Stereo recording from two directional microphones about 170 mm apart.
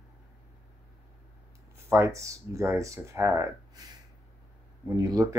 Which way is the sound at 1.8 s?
15° right (ahead or behind).